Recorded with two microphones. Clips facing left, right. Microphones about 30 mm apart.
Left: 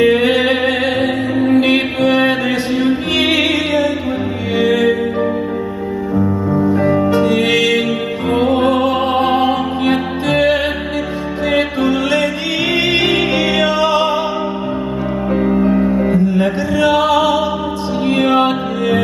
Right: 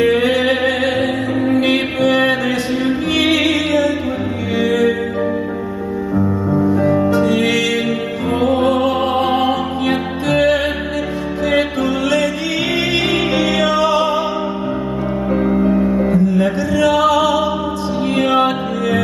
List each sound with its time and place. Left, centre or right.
0.0 s music: centre
6.8 s music: centre
15.3 s music: centre